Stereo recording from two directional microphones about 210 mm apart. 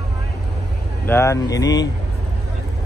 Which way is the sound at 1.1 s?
15° left (ahead or behind).